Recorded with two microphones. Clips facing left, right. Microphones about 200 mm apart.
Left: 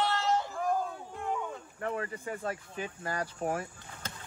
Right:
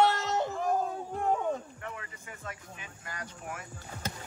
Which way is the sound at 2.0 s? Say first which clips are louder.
Left 10 dB; 35° left (ahead or behind).